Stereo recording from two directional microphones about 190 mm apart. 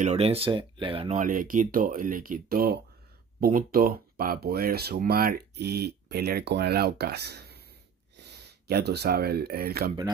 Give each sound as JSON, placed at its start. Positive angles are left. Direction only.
{"t": 0.0, "sound": "speech", "side_deg": -35}